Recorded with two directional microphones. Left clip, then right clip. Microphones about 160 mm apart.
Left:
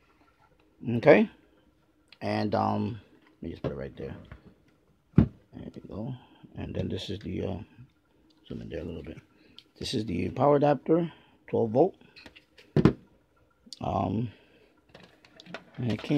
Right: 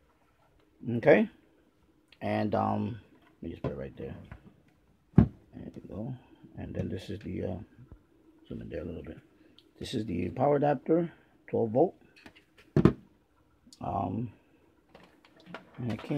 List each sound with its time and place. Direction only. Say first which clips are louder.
0.8 s speech: left 3 dB; 40° left (ahead or behind)
2.0 s speech: left 1 dB; 30° left (ahead or behind)
5.5 s a sound: left 2 dB; 30° left (ahead or behind)
6.5 s speech: left 3 dB; 45° left (ahead or behind)
13.7 s speech: left 3 dB; 80° left
15.3 s a sound: left 3 dB; 60° left (ahead or behind)